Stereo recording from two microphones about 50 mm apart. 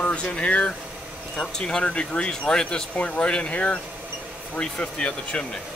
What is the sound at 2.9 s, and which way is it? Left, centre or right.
Speech, left.